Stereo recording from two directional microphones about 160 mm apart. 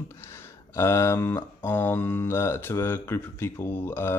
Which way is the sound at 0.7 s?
20° left (ahead or behind).